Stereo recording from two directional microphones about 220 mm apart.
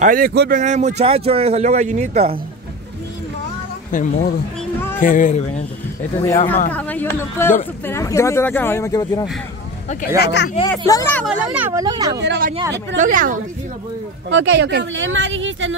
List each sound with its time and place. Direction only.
0.0 s speech: 40° right (ahead or behind)
0.6 s speech: 30° right (ahead or behind)
3.9 s speech: 35° left (ahead or behind)
6.2 s speech: 10° left (ahead or behind)
9.8 s speech: 45° left (ahead or behind)
10.9 s speech: 15° left (ahead or behind)
11.2 s speech: 5° right (ahead or behind)
12.2 s speech: 50° right (ahead or behind)
12.9 s speech: 35° right (ahead or behind)
14.3 s speech: 55° right (ahead or behind)